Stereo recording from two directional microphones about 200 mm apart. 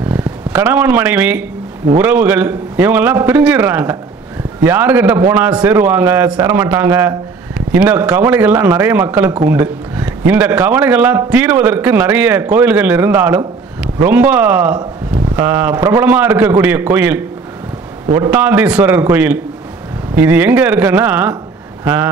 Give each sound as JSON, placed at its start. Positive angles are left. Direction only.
{"t": 0.1, "sound": "a man's voice", "side_deg": -10}